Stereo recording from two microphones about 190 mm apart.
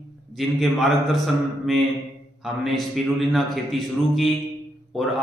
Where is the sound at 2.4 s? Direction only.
Centre (ahead or behind).